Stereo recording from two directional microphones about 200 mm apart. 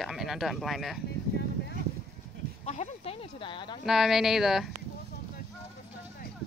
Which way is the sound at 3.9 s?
Centre (ahead or behind).